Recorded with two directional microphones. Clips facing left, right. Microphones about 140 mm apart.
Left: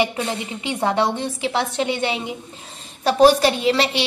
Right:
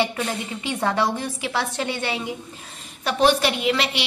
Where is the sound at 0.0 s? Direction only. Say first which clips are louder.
Left 2 dB; 20° left (ahead or behind).